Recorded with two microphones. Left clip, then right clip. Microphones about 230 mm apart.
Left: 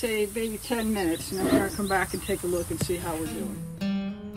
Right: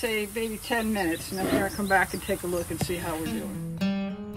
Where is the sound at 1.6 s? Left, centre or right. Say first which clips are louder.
Right 3 dB; centre.